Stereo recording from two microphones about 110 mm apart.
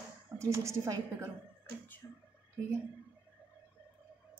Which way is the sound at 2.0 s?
15° left (ahead or behind).